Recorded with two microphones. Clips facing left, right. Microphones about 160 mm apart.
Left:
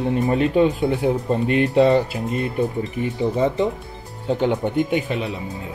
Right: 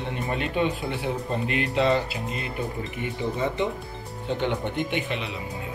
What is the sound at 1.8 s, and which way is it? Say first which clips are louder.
Speech: left 7 dB; 45° left (ahead or behind).